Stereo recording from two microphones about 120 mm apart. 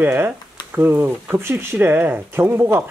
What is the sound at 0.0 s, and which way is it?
Speech, 15° right (ahead or behind).